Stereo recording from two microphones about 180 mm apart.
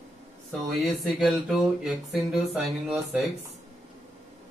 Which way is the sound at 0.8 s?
Centre (ahead or behind).